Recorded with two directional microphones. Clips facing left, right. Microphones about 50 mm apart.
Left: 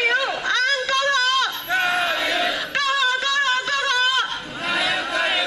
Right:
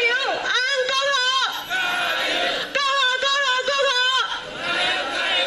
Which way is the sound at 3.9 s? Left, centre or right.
Left.